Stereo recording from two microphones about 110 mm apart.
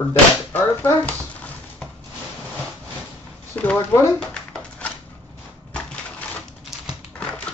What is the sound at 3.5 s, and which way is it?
Speech, 15° left (ahead or behind).